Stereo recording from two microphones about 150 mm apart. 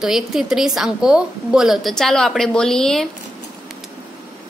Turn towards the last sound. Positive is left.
turn(degrees=5)  # may be behind; listen again after turning